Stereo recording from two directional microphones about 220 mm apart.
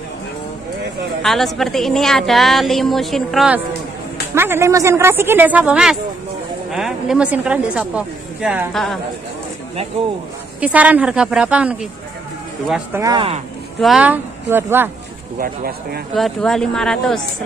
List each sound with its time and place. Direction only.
1.2 s a woman's voice: centre (ahead or behind)
10.6 s a woman's voice: 5° right (ahead or behind)
13.0 s speech: 20° right (ahead or behind)
13.7 s speech: centre (ahead or behind)
15.3 s speech: 40° right (ahead or behind)
16.2 s a woman's voice: centre (ahead or behind)